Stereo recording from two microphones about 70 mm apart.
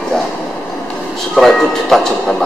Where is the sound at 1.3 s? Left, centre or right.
Centre.